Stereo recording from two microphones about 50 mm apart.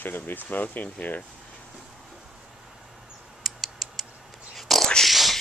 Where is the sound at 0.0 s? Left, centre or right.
Left.